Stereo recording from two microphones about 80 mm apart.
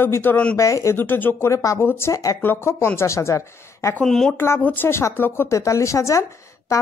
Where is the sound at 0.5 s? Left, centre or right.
Left.